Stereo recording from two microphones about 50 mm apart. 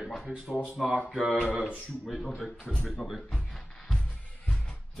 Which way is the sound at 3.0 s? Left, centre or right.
Centre.